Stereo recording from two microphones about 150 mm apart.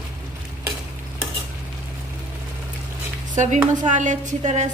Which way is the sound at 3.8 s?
55° right (ahead or behind).